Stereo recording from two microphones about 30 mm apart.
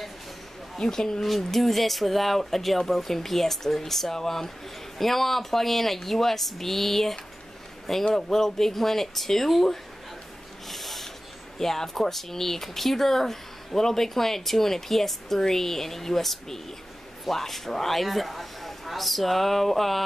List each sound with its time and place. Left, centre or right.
0.7 s speech: centre
1.4 s speech: centre
10.7 s a sound: centre
11.5 s speech: centre